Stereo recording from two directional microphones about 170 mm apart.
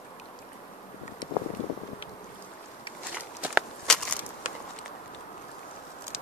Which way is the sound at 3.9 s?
5° left (ahead or behind).